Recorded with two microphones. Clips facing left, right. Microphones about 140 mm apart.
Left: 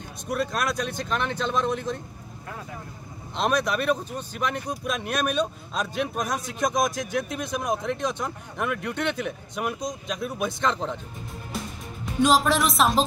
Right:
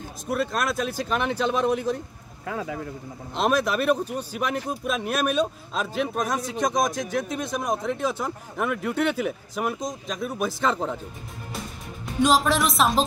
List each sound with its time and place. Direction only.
0.3 s speech: centre (ahead or behind)
2.4 s speech: 90° right
3.3 s speech: centre (ahead or behind)
12.2 s speech: centre (ahead or behind)